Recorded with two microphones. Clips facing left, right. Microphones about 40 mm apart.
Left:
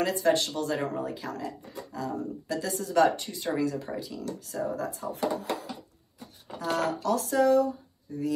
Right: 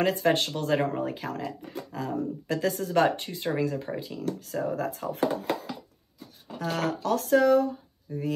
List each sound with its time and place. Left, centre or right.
0.0 s speech: right
6.6 s speech: right